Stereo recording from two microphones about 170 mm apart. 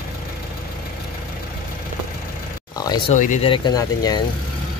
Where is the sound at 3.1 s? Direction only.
45° left (ahead or behind).